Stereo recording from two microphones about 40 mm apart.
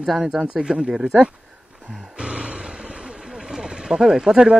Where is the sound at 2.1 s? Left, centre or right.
Right.